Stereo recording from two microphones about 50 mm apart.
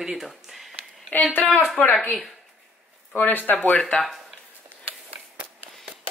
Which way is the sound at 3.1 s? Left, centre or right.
Left.